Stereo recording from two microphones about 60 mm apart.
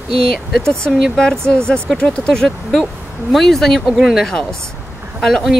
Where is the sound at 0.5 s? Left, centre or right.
Centre.